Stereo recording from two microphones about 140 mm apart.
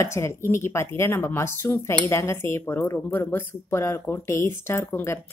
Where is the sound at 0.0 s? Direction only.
20° left (ahead or behind).